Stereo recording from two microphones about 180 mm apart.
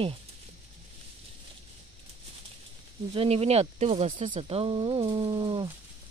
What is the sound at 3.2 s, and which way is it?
Speech, 35° right (ahead or behind).